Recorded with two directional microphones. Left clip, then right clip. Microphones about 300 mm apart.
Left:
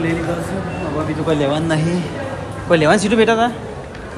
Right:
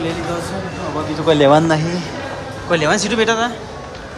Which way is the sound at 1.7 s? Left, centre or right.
Centre.